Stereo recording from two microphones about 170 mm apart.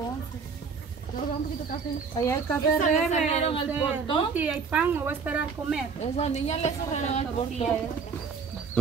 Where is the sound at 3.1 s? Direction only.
35° left (ahead or behind).